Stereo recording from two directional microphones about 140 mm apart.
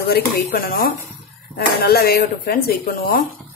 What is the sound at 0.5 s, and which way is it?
Speech, 90° left.